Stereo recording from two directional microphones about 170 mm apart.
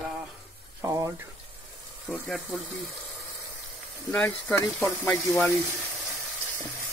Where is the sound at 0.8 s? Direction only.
20° right (ahead or behind).